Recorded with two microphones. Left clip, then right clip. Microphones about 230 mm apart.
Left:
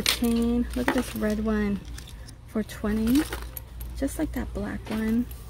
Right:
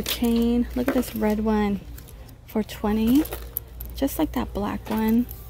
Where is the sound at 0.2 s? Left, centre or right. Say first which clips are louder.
Right 3 dB; centre.